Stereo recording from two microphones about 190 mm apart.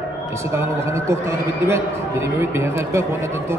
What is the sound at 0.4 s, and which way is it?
A man's voice, 15° right (ahead or behind).